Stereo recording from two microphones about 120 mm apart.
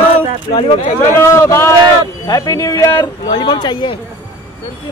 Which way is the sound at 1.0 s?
20° left (ahead or behind).